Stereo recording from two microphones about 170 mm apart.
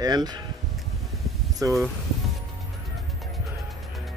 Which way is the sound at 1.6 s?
20° right (ahead or behind).